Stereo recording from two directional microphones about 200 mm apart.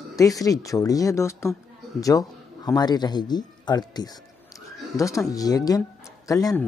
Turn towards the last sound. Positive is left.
turn(degrees=15)  # may be behind; listen again after turning